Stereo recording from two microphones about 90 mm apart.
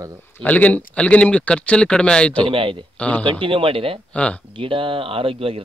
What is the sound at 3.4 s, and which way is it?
Speech, 75° right (ahead or behind).